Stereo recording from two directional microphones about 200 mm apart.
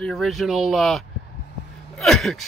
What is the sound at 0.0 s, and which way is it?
Speech, centre (ahead or behind).